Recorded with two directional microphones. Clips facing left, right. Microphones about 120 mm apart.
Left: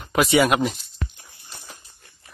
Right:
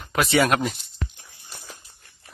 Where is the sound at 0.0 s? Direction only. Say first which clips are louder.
Left 2 dB; 5° left (ahead or behind).